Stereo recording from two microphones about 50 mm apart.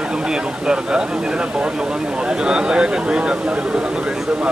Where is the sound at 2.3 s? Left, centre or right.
Centre.